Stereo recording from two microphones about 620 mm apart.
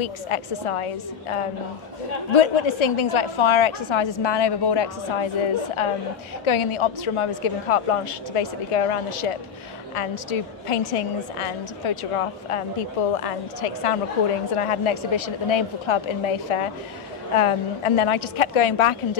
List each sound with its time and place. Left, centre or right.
0.0 s a woman's voice: left